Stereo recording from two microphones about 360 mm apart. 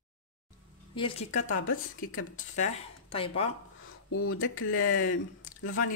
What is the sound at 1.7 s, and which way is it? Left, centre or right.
Speech, left.